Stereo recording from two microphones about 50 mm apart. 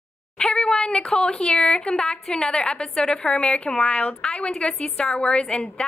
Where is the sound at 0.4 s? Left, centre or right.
Centre.